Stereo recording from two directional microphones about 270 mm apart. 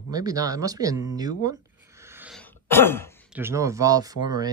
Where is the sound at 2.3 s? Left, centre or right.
Centre.